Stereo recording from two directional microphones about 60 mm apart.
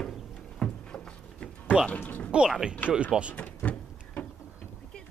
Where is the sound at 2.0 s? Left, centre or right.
Left.